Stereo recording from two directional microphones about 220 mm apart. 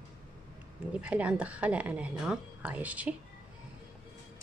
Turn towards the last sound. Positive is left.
turn(degrees=-5)  # may be behind; listen again after turning